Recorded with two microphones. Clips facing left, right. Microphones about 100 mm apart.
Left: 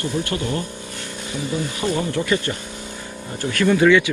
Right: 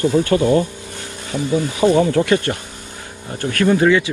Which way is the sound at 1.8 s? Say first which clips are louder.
Right 9 dB; 50° right (ahead or behind).